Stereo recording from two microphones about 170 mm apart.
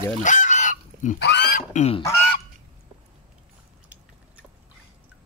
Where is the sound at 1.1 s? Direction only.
75° left (ahead or behind).